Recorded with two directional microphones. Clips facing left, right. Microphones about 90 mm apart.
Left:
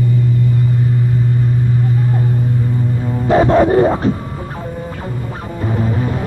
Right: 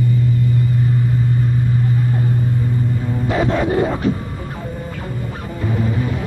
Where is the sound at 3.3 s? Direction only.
35° left (ahead or behind).